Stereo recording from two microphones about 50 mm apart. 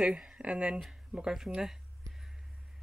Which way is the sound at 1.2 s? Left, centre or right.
Centre.